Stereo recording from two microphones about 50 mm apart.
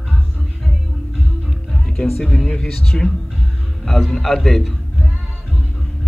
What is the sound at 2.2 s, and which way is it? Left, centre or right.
A man's voice, centre.